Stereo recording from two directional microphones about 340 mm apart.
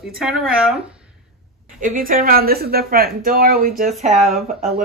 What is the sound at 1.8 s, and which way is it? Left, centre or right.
Speech, right.